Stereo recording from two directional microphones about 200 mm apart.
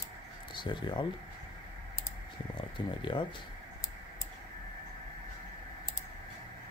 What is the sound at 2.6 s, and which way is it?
Speech, 25° left (ahead or behind).